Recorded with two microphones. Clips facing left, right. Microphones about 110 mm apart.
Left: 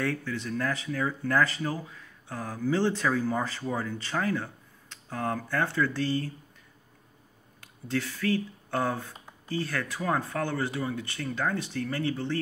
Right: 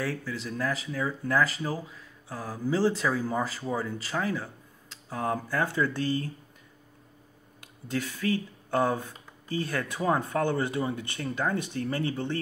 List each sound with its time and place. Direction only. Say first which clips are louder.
0.0 s speech: left 2 dB; 5° right (ahead or behind)
7.6 s speech: left 1 dB; 15° right (ahead or behind)